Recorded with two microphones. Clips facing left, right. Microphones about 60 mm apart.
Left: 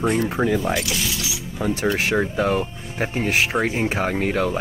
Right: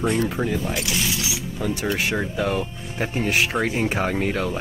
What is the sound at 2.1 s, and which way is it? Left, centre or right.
Speech, left.